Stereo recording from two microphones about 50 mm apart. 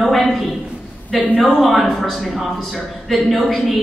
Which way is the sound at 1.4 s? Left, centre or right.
Centre.